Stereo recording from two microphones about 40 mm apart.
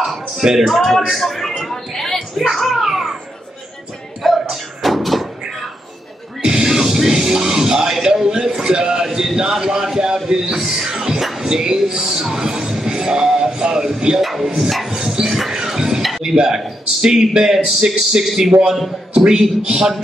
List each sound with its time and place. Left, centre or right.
0.4 s speech: centre
0.7 s speech: centre
1.7 s a sound: centre
4.2 s thump: centre
6.4 s music: centre
9.9 s a man's voice: centre
14.9 s dog: centre
15.6 s music: centre
16.3 s a man's voice: centre